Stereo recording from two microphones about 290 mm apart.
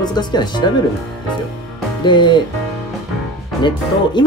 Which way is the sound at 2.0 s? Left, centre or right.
Centre.